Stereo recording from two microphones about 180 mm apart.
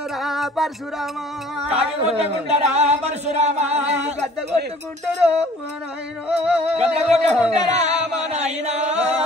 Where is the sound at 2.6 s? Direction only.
40° right (ahead or behind).